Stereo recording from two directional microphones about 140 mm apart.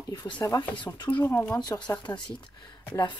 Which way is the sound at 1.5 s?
30° left (ahead or behind).